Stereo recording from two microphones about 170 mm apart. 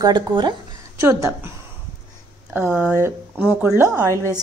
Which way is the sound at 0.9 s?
15° right (ahead or behind).